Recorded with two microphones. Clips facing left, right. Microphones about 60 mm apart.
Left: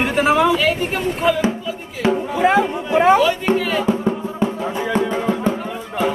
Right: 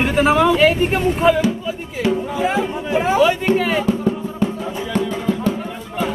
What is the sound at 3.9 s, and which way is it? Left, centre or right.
Music, left.